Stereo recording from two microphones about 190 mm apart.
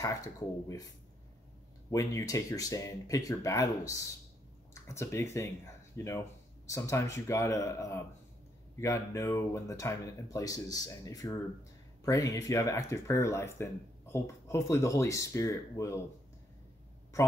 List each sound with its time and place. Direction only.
0.0 s speech: 15° left (ahead or behind)
1.9 s speech: 15° left (ahead or behind)